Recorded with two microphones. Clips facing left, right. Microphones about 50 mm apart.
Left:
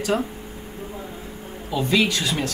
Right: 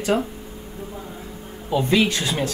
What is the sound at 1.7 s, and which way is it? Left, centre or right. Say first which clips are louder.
Speech: right 2 dB; right.